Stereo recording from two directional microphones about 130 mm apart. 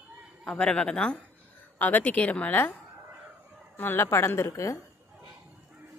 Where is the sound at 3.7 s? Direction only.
15° left (ahead or behind).